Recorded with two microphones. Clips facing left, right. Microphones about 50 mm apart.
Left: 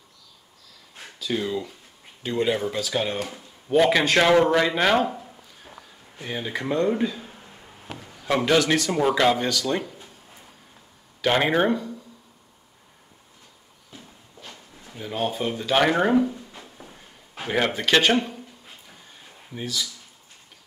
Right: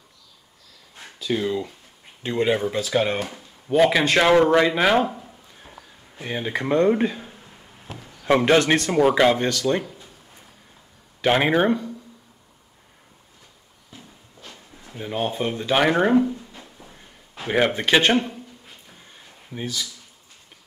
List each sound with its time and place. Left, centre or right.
1.2 s speech: centre
2.2 s speech: centre
3.0 s speech: right
3.3 s speech: centre
6.1 s speech: centre
6.5 s speech: right
8.5 s speech: right
8.9 s speech: centre
11.1 s speech: centre
15.0 s speech: centre